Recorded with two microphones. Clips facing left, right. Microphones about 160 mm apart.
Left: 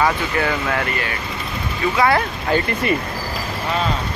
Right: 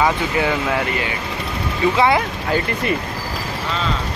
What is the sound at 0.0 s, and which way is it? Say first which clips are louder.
Speech: right 1 dB; 15° right (ahead or behind).